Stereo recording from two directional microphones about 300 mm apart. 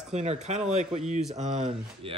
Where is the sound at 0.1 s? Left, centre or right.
Right.